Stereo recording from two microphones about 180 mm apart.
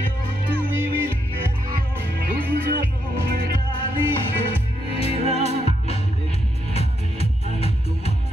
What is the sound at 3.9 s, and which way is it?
Music, 30° left (ahead or behind).